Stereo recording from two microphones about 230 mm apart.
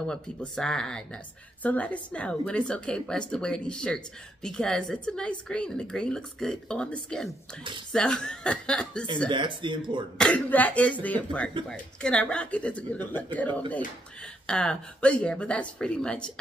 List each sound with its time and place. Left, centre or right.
0.0 s speech: centre
9.3 s speech: right
10.1 s speech: centre